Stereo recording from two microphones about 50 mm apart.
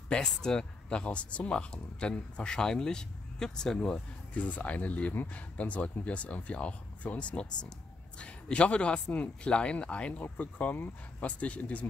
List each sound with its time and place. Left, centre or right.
0.4 s speech: centre
4.3 s speech: left